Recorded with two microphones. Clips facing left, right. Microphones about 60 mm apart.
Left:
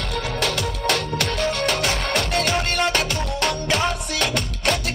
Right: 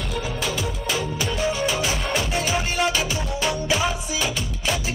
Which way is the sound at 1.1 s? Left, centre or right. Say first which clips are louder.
Left 1 dB; left.